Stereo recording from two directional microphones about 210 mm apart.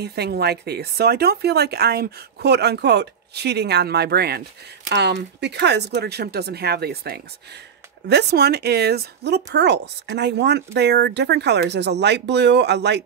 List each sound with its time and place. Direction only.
0.0 s speech: 50° right (ahead or behind)